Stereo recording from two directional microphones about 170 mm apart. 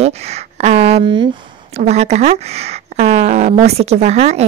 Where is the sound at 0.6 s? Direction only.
40° right (ahead or behind).